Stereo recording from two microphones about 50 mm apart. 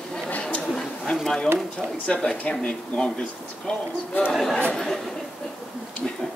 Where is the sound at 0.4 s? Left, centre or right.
Left.